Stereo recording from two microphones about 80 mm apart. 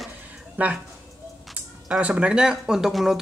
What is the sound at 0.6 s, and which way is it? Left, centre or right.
Speech, centre.